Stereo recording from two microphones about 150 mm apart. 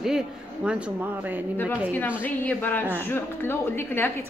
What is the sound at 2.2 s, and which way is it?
A woman's voice, 10° left (ahead or behind).